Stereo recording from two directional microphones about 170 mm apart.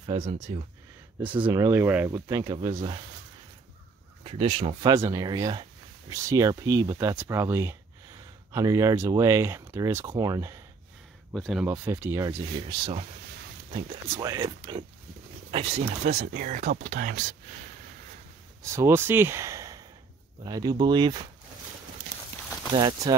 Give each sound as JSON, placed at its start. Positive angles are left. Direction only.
{"t": 0.0, "sound": "speech", "side_deg": -35}
{"t": 1.6, "sound": "speech", "side_deg": -15}
{"t": 2.4, "sound": "speech", "side_deg": -30}
{"t": 4.2, "sound": "speech", "side_deg": -35}
{"t": 4.9, "sound": "speech", "side_deg": -20}
{"t": 11.3, "sound": "speech", "side_deg": 0}
{"t": 11.6, "sound": "speech", "side_deg": -10}
{"t": 12.6, "sound": "speech", "side_deg": -25}
{"t": 14.1, "sound": "speech", "side_deg": -20}
{"t": 15.5, "sound": "speech", "side_deg": -35}
{"t": 16.3, "sound": "speech", "side_deg": -50}
{"t": 18.6, "sound": "speech", "side_deg": -15}
{"t": 22.8, "sound": "speech", "side_deg": -25}